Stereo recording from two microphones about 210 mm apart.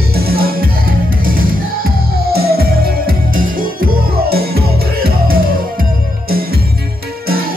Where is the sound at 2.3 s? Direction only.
45° right (ahead or behind).